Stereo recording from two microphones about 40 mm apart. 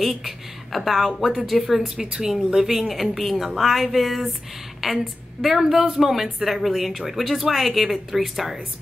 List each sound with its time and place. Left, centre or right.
0.0 s a woman's voice: centre
2.0 s a woman's voice: centre